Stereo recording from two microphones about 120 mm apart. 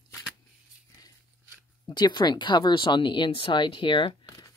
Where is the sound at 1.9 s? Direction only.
35° left (ahead or behind).